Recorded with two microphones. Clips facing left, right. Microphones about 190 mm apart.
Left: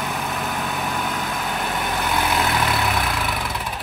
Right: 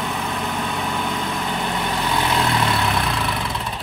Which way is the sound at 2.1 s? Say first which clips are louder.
Right 1 dB; 5° left (ahead or behind).